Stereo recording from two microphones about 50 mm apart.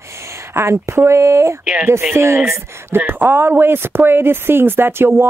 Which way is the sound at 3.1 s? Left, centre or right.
Right.